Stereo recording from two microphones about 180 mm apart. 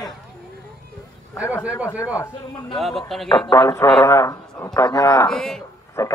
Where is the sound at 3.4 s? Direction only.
15° left (ahead or behind).